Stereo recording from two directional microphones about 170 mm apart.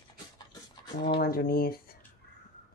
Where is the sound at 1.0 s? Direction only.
65° left (ahead or behind).